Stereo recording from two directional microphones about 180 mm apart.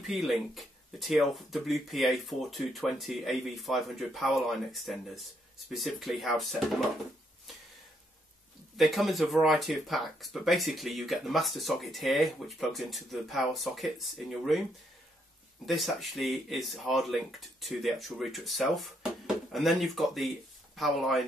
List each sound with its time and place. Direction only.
0.0 s speech: centre (ahead or behind)
8.7 s speech: centre (ahead or behind)
15.6 s speech: centre (ahead or behind)